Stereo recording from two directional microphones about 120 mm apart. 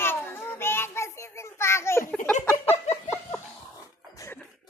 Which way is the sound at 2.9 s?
20° left (ahead or behind).